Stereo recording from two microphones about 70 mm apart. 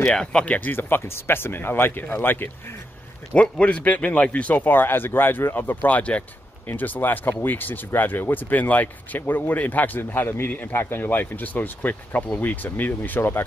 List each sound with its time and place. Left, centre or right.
0.0 s speech: centre
0.7 s speech: left
3.3 s speech: centre